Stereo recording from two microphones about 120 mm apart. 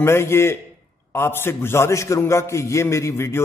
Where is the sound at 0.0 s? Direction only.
20° left (ahead or behind).